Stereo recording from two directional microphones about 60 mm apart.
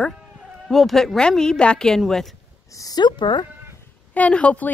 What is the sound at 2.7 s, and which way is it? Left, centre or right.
Speech, left.